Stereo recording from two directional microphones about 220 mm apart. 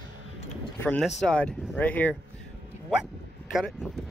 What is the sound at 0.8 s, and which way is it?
Speech, 5° left (ahead or behind).